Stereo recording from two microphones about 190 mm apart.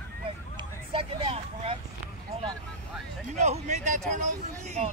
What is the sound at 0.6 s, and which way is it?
Speech, 30° right (ahead or behind).